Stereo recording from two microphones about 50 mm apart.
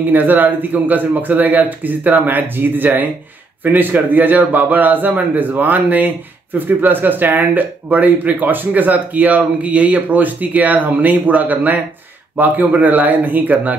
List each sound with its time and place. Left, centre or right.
0.0 s speech: right